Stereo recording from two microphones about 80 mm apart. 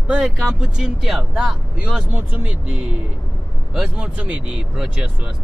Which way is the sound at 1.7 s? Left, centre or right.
Centre.